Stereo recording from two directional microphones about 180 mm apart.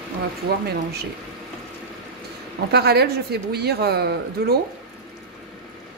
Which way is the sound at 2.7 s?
65° right (ahead or behind).